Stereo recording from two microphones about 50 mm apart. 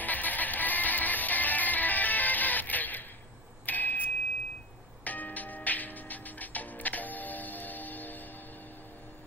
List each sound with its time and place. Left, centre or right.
0.0 s music: left
3.6 s a sound: left
5.0 s music: left